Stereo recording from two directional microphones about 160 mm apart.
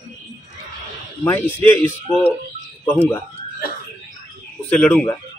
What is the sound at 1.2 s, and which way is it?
Speech, 15° left (ahead or behind).